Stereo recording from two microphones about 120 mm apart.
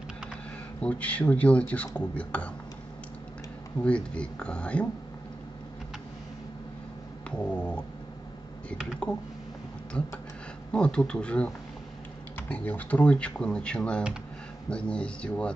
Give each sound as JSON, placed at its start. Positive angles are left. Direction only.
{"t": 0.7, "sound": "a man's voice", "side_deg": 10}
{"t": 3.8, "sound": "a man's voice", "side_deg": 10}
{"t": 7.2, "sound": "cat", "side_deg": 10}
{"t": 9.9, "sound": "a man's voice", "side_deg": 10}